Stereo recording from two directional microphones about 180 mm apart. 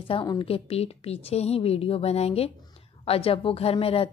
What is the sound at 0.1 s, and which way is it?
A woman's voice, 25° left (ahead or behind).